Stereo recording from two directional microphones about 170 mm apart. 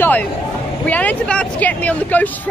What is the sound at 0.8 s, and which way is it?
Speech, 10° left (ahead or behind).